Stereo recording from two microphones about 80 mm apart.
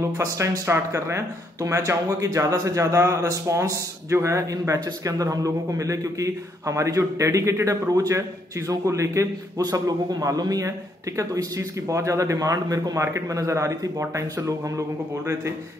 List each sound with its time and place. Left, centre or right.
0.2 s a man's voice: right
9.6 s a man's voice: right